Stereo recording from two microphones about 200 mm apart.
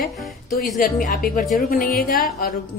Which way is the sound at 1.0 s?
40° left (ahead or behind).